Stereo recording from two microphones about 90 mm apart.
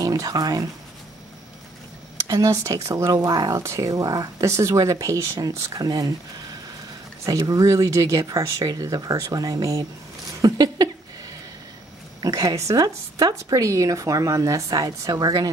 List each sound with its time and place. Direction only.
0.0 s speech: 45° right (ahead or behind)
2.2 s speech: 40° right (ahead or behind)
7.2 s speech: 40° right (ahead or behind)
12.2 s speech: 40° right (ahead or behind)